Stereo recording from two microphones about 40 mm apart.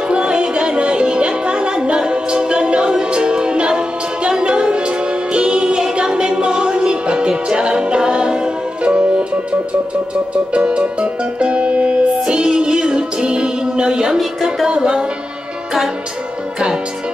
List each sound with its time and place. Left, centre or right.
0.1 s music: right
14.1 s music: centre
14.7 s music: right